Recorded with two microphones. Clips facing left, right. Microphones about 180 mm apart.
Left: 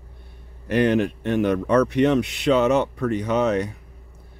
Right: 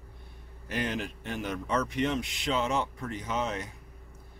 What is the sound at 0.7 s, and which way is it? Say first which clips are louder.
Speech: left 13 dB; 65° left (ahead or behind).